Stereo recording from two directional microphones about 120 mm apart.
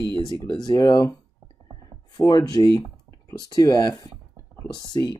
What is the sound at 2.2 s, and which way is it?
Speech, 35° left (ahead or behind).